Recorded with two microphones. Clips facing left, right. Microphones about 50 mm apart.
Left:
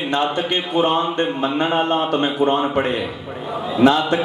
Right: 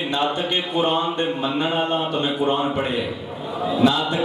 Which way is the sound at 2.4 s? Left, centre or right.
Centre.